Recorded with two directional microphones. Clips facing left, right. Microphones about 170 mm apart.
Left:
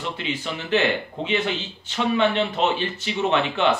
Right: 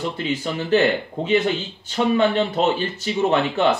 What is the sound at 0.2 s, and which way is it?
Speech, 40° right (ahead or behind).